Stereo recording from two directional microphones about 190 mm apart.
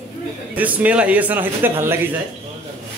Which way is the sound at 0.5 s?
10° right (ahead or behind).